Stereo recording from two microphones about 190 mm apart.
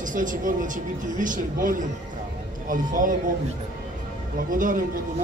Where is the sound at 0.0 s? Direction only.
45° right (ahead or behind).